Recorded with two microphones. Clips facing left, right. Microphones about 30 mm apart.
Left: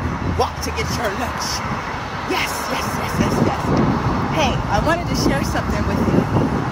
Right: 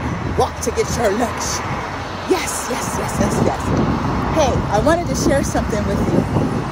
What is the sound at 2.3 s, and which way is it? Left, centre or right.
Speech, left.